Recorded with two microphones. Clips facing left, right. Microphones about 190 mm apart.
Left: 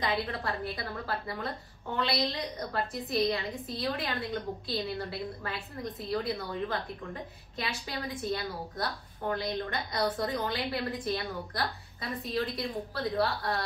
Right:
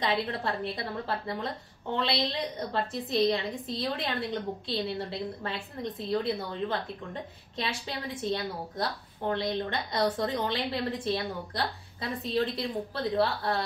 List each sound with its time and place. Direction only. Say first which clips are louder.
0.0 s a woman's voice: right 2 dB; 25° right (ahead or behind)